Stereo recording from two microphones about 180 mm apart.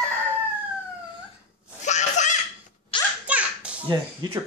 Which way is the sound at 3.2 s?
5° right (ahead or behind).